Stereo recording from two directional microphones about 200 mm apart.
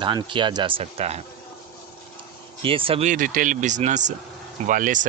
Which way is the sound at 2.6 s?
25° right (ahead or behind).